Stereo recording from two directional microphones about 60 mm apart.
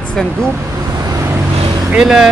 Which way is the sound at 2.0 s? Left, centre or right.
Centre.